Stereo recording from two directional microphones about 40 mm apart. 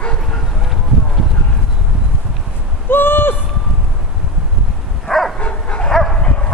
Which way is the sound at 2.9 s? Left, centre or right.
Left.